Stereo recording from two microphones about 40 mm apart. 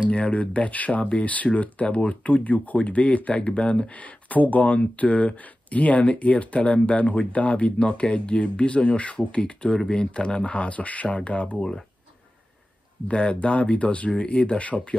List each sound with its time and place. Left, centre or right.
0.1 s speech: left
3.9 s speech: left
13.1 s speech: left